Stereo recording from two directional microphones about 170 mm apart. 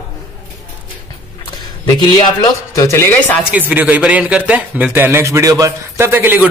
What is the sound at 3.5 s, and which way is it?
A man's voice, 10° right (ahead or behind).